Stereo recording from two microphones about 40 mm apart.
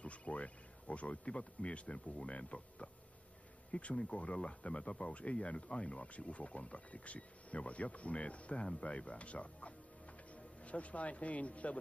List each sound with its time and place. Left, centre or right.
0.0 s speech: left
3.9 s speech: left